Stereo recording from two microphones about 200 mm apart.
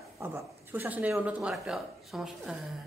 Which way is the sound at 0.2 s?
10° right (ahead or behind).